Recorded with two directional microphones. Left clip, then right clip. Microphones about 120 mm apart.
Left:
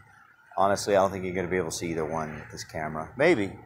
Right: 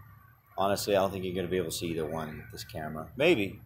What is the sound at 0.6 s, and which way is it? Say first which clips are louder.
Speech: left 4 dB; 35° left (ahead or behind).